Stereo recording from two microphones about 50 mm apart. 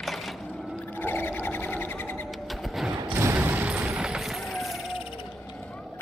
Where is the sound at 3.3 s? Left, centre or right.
Right.